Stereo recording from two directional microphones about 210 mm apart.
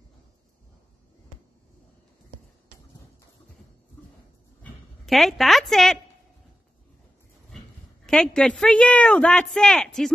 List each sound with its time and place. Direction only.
4.6 s a woman's voice: centre (ahead or behind)
8.1 s a man's voice: 5° left (ahead or behind)